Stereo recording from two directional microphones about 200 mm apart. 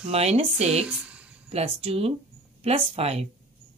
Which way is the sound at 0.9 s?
5° right (ahead or behind).